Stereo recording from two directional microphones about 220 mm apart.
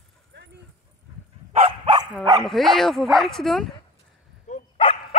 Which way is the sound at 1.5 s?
25° right (ahead or behind).